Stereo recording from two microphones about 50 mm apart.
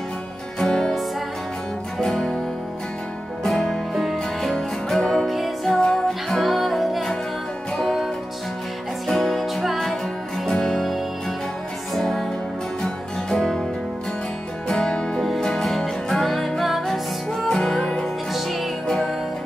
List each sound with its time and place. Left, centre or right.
0.6 s music: centre
2.0 s music: centre
3.4 s music: centre
5.8 s music: centre
6.2 s music: centre
9.0 s music: centre
14.7 s music: centre
15.1 s music: centre
18.3 s music: centre